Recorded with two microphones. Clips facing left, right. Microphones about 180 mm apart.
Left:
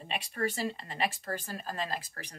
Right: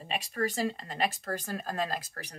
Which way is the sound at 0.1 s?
40° right (ahead or behind).